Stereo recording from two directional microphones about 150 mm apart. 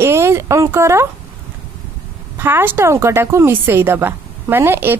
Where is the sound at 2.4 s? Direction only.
15° right (ahead or behind).